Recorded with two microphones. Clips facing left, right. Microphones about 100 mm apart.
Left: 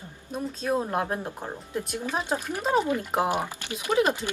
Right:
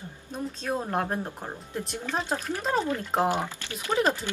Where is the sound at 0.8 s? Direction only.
5° left (ahead or behind).